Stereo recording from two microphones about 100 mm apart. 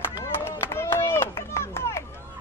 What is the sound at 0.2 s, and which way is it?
Run, 25° left (ahead or behind).